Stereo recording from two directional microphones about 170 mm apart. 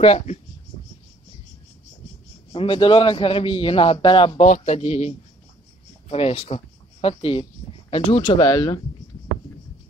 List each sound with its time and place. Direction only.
0.0 s a man's voice: 35° left (ahead or behind)
2.5 s a man's voice: 30° left (ahead or behind)
4.4 s a man's voice: 40° left (ahead or behind); by 8.7 s 25° left (ahead or behind)